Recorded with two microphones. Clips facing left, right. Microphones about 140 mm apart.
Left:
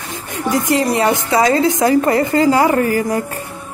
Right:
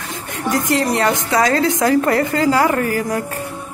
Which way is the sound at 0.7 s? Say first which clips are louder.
Left 2 dB; 10° left (ahead or behind).